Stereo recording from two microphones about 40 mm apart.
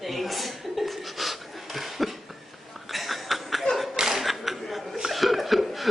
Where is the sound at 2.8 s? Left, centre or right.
Centre.